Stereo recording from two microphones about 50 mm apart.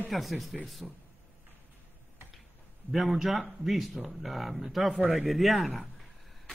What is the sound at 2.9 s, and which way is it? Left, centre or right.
A man's voice, centre.